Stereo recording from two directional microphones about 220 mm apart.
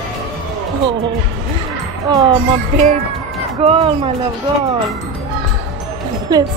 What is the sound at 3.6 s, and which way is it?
Speech, 25° right (ahead or behind).